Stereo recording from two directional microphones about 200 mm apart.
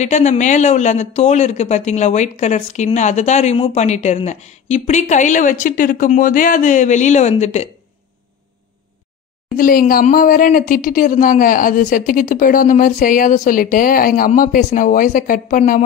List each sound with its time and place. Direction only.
0.0 s speech: 35° left (ahead or behind)
9.6 s speech: 45° left (ahead or behind)